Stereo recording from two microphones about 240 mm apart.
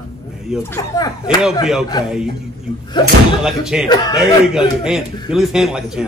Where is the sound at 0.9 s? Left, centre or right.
Centre.